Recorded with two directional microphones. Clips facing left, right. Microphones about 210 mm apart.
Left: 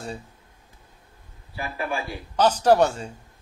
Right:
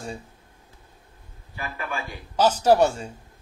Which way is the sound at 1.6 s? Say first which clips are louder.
Left 3 dB; 35° left (ahead or behind).